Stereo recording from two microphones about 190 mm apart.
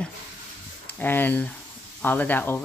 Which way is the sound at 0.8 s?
10° left (ahead or behind).